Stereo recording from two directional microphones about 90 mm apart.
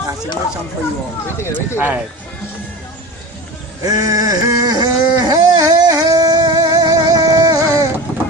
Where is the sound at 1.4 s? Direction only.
30° left (ahead or behind).